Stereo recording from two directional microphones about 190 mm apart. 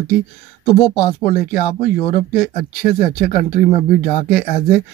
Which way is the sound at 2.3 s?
45° left (ahead or behind).